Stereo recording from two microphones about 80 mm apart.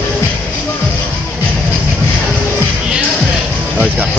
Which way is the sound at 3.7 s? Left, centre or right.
Centre.